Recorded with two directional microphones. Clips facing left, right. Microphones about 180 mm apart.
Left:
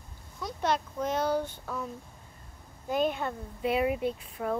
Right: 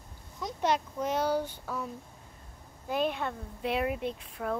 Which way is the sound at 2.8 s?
Centre (ahead or behind).